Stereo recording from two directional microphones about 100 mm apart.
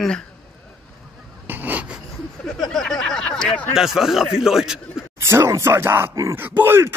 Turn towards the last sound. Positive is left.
turn(degrees=-20)  # may be behind; listen again after turning